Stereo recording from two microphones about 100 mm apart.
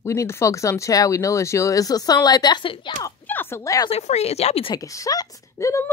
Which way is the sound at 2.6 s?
60° left (ahead or behind).